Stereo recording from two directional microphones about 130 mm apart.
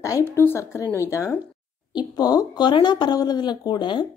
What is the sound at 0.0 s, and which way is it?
A woman's voice, 20° left (ahead or behind).